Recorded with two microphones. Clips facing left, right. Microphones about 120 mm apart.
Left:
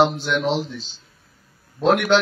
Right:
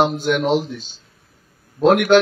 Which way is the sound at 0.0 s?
50° right (ahead or behind).